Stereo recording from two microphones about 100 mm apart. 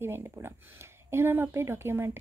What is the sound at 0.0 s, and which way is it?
A woman's voice, 25° right (ahead or behind).